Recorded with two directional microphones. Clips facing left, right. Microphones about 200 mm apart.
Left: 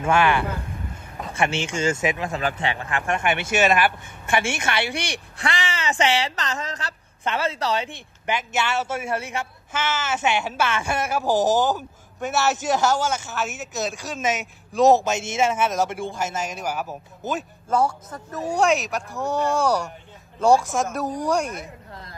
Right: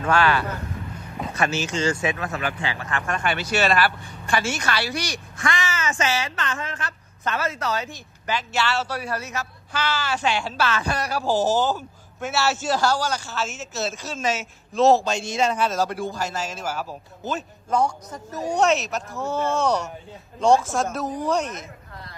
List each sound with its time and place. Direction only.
0.1 s a man's voice: 20° left (ahead or behind)
1.9 s a man's voice: 20° left (ahead or behind)
8.3 s a man's voice: 20° left (ahead or behind)
17.6 s speech: 5° left (ahead or behind)